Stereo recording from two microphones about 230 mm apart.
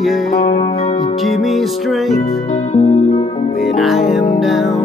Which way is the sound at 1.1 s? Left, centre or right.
Centre.